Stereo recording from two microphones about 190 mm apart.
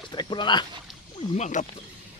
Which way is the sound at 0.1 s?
25° left (ahead or behind).